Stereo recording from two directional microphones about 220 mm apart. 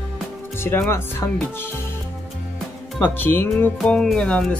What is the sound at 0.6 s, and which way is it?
Speech, 10° left (ahead or behind).